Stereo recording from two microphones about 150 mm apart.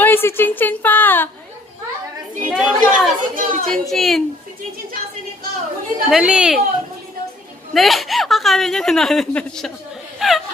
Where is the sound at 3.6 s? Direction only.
Centre (ahead or behind).